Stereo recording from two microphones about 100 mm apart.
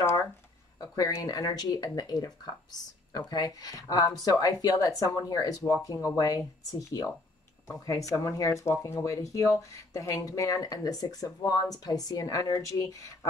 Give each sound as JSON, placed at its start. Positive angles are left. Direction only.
{"t": 1.1, "sound": "speech", "side_deg": 35}